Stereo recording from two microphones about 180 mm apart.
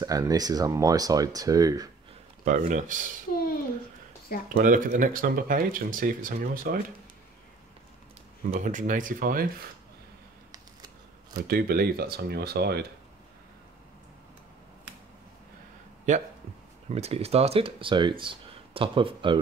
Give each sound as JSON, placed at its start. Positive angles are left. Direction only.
{"t": 0.0, "sound": "speech", "side_deg": -20}
{"t": 2.4, "sound": "speech", "side_deg": -50}
{"t": 4.6, "sound": "speech", "side_deg": -50}
{"t": 8.5, "sound": "speech", "side_deg": -45}
{"t": 11.3, "sound": "speech", "side_deg": -60}
{"t": 16.1, "sound": "speech", "side_deg": -45}